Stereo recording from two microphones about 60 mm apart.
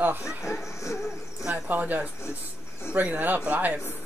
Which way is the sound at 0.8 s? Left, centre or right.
Left.